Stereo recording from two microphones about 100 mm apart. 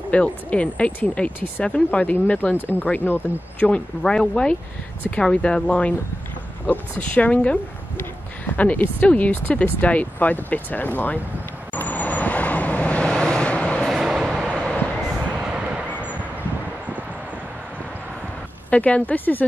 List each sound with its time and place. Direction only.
0.1 s speech: 10° left (ahead or behind)
11.7 s vehicle: 15° left (ahead or behind)
13.8 s vehicle: centre (ahead or behind)
15.9 s vehicle: 15° left (ahead or behind)
18.7 s speech: 15° left (ahead or behind)